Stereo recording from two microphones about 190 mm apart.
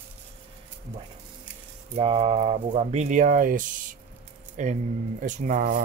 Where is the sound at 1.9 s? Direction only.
30° right (ahead or behind).